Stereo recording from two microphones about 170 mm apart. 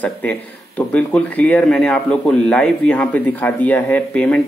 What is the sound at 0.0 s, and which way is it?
Speech, 10° left (ahead or behind).